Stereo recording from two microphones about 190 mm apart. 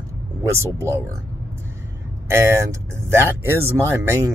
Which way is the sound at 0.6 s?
15° right (ahead or behind).